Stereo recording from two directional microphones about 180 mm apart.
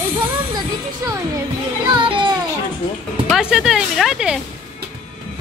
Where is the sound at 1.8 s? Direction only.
25° right (ahead or behind).